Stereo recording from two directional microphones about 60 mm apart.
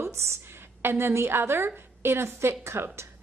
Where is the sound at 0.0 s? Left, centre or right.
Right.